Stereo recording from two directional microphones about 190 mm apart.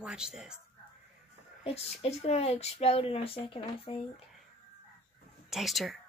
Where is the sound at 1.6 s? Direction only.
30° left (ahead or behind).